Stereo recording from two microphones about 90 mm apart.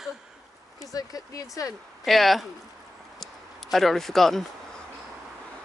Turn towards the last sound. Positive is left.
turn(degrees=5)  # may be behind; listen again after turning